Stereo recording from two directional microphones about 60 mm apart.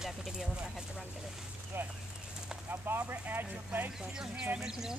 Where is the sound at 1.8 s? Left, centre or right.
Right.